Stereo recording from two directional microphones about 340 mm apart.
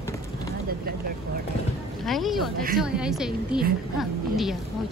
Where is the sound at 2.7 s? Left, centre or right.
Centre.